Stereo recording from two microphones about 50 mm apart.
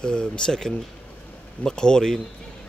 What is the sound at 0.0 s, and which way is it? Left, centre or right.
Speech, centre.